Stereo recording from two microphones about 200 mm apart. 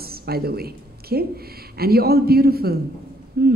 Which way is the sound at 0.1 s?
50° right (ahead or behind).